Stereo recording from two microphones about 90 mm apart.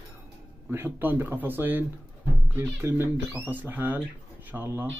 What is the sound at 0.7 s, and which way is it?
Speech, 25° right (ahead or behind).